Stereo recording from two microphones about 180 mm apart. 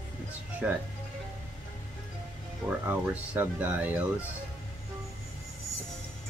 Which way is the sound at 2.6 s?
10° right (ahead or behind).